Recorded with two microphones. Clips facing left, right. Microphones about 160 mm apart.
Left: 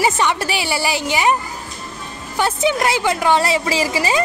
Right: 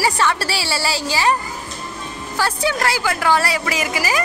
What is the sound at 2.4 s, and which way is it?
A woman's voice, 20° left (ahead or behind).